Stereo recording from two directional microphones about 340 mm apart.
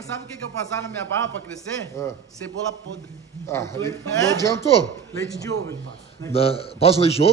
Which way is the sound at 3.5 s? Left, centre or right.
Centre.